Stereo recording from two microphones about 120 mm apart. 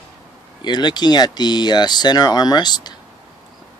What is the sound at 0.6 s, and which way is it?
Speech, 35° left (ahead or behind).